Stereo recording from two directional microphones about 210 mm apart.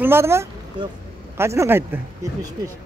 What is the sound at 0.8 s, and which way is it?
Speech, 25° right (ahead or behind).